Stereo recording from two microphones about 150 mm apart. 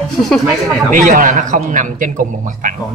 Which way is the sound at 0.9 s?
60° right (ahead or behind).